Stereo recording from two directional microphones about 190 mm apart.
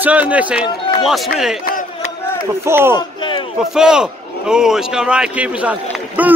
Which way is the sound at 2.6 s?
10° right (ahead or behind).